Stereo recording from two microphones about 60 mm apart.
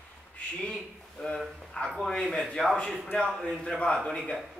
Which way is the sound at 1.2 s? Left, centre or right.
Centre.